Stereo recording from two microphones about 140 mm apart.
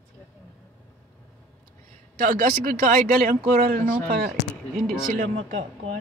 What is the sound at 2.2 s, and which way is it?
Speech, 75° right (ahead or behind).